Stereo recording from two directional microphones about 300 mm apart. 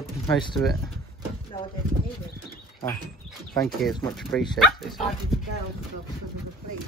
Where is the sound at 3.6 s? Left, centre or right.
Centre.